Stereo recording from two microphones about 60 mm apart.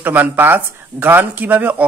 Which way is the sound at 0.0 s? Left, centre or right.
Right.